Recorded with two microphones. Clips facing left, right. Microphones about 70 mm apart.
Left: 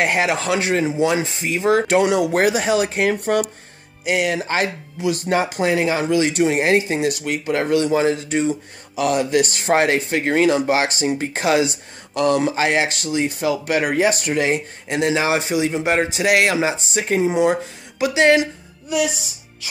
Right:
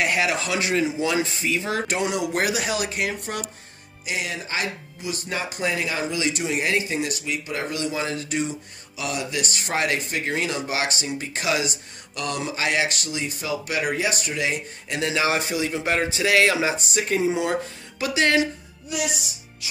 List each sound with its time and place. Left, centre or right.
0.0 s speech: left
1.0 s speech: left
2.0 s speech: left
2.3 s speech: left
3.3 s speech: left
8.9 s speech: left
14.9 s speech: left
16.5 s speech: left